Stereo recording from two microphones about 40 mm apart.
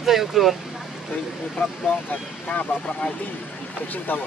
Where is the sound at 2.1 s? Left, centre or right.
Left.